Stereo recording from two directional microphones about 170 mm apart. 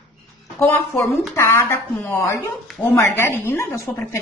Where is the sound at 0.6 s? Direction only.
10° left (ahead or behind).